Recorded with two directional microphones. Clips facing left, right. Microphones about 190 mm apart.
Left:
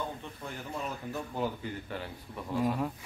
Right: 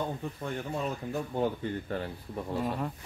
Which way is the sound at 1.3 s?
30° right (ahead or behind).